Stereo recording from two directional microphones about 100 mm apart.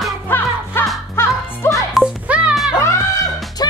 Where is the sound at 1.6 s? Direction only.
25° left (ahead or behind).